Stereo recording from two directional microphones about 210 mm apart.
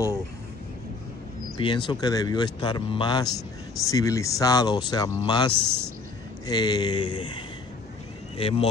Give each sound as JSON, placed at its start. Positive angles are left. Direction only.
{"t": 1.6, "sound": "speech", "side_deg": 20}
{"t": 8.4, "sound": "speech", "side_deg": 25}